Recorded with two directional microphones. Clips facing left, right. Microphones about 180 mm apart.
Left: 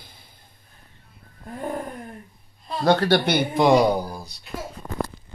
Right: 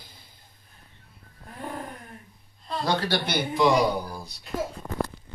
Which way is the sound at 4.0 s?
20° left (ahead or behind).